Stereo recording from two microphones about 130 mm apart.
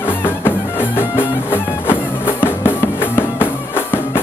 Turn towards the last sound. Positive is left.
turn(degrees=15)  # may be behind; listen again after turning